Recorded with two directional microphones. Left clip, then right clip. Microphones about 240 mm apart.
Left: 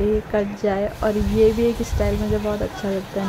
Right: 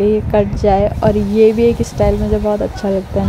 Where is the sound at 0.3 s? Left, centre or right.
Centre.